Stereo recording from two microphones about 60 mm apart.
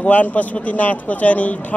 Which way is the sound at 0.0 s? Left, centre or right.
Left.